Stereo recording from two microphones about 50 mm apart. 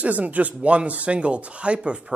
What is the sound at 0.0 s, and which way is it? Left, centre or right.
Speech, right.